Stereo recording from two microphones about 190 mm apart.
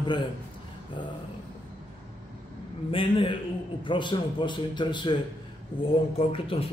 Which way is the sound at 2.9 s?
30° left (ahead or behind).